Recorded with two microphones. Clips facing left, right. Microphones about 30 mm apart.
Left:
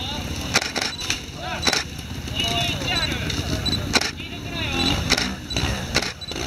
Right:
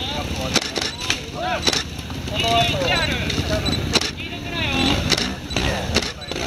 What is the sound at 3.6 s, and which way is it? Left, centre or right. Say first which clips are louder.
Single-lens reflex camera: left 3 dB; centre.